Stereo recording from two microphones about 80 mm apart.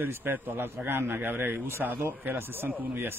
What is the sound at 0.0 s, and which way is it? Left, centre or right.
Speech, right.